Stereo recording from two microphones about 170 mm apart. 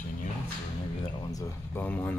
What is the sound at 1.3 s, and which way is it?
Speech, 15° left (ahead or behind).